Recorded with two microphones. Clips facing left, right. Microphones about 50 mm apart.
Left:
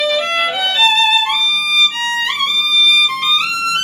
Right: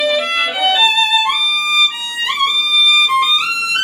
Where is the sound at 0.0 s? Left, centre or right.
Centre.